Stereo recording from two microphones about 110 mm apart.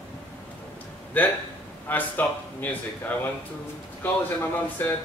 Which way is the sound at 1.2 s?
15° left (ahead or behind).